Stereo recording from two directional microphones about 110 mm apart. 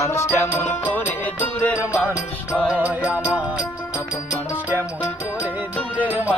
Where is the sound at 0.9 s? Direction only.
15° left (ahead or behind).